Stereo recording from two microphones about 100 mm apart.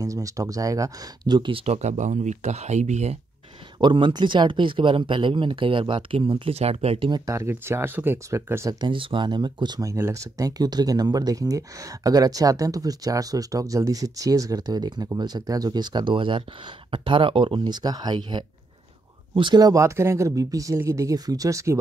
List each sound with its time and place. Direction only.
0.0 s speech: 35° right (ahead or behind); by 1.8 s 65° right (ahead or behind)
2.5 s speech: 90° right
3.8 s speech: 50° right (ahead or behind); by 7.1 s 90° right
7.2 s speech: 30° right (ahead or behind)
8.7 s speech: 55° right (ahead or behind); by 9.9 s 40° right (ahead or behind)
9.9 s speech: 30° right (ahead or behind); by 19.6 s 55° right (ahead or behind)
19.6 s speech: 30° right (ahead or behind)